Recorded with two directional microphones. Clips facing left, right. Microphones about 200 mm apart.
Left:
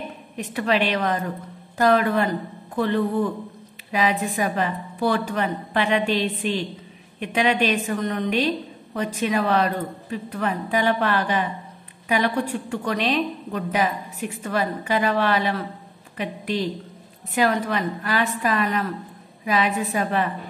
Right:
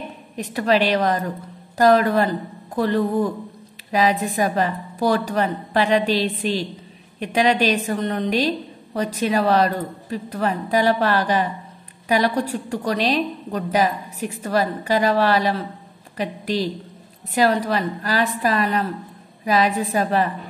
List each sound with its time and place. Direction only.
0.4 s a woman's voice: 35° right (ahead or behind)